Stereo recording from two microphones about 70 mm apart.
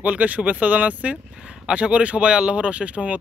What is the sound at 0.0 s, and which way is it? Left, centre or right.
Speech, right.